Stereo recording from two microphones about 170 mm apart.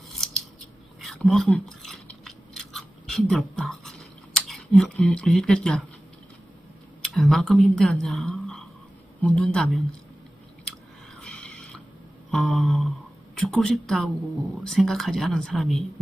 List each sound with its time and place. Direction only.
1.0 s a sound: centre (ahead or behind)
7.0 s a woman's voice: centre (ahead or behind)
10.7 s chewing: 5° left (ahead or behind)
12.3 s a woman's voice: centre (ahead or behind)